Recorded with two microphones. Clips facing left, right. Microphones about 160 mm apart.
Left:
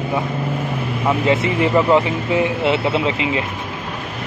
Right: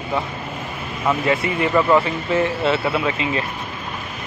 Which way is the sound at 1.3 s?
20° left (ahead or behind).